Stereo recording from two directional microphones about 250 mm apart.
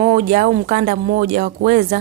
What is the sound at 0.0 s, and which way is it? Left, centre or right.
A woman's voice, right.